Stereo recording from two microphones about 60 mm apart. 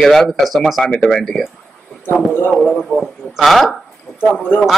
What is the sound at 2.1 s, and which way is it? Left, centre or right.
Speech, left.